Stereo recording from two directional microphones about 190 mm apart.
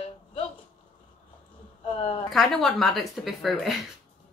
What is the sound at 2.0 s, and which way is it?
Speech, 30° left (ahead or behind).